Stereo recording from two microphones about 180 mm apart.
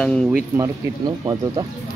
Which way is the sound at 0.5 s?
20° right (ahead or behind).